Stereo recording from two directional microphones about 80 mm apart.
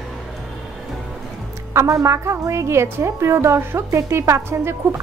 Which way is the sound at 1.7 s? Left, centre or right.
Right.